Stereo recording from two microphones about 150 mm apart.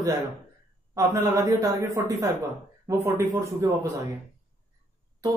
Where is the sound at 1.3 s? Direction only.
20° right (ahead or behind).